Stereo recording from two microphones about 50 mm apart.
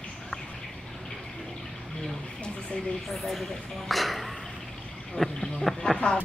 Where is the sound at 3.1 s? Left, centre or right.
Centre.